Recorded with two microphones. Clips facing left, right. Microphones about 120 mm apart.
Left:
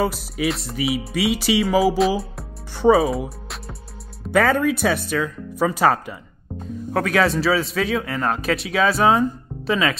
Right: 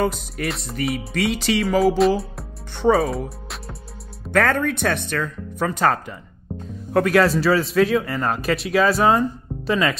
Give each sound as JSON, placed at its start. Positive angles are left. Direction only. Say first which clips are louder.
{"t": 0.0, "sound": "speech", "louder": "left 1 dB", "side_deg": 5}